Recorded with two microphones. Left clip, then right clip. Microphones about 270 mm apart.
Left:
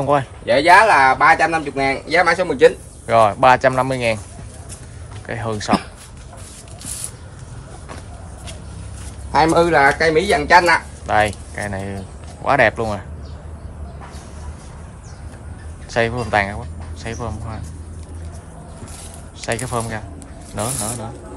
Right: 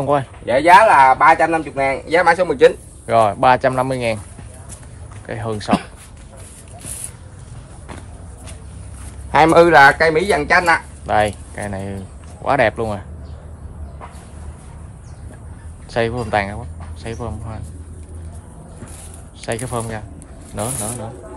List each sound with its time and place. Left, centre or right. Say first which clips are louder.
0.0 s speech: even; centre
5.2 s speech: left 1 dB; centre
9.3 s speech: right 4 dB; right
9.7 s speech: right 5 dB; centre
9.9 s speech: even; centre
15.9 s speech: left 1 dB; centre
19.4 s speech: left 1 dB; centre